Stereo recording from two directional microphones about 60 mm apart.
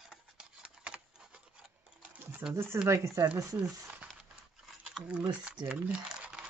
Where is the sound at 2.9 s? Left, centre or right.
Right.